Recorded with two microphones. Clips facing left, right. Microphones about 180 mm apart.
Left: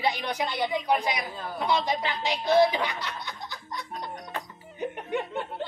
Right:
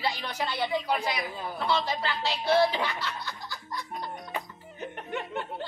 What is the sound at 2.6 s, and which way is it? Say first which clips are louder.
Snicker: left 3 dB; 15° left (ahead or behind).